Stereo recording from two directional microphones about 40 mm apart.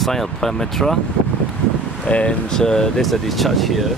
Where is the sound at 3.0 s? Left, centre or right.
Centre.